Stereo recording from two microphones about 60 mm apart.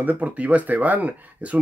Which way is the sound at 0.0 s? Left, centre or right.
Right.